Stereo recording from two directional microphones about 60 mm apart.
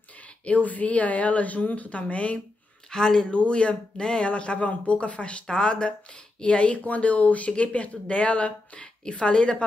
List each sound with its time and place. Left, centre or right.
0.5 s speech: left
2.9 s speech: centre